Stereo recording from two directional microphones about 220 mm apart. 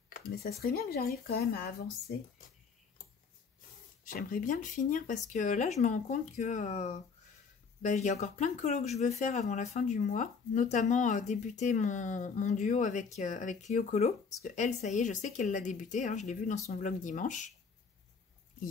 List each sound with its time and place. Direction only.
0.4 s speech: 45° left (ahead or behind)
4.0 s speech: 40° left (ahead or behind)